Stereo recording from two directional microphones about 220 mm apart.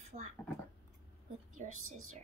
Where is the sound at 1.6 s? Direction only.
35° right (ahead or behind).